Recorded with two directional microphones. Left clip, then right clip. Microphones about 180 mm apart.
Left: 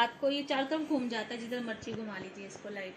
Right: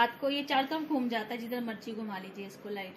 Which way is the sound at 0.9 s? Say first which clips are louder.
Right 2 dB; 40° right (ahead or behind).